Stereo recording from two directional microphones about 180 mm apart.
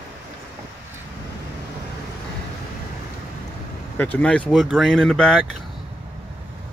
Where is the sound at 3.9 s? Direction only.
10° left (ahead or behind).